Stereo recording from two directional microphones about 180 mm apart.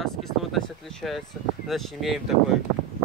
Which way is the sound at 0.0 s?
Centre (ahead or behind).